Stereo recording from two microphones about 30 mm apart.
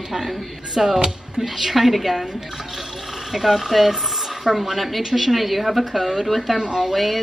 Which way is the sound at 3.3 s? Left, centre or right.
Centre.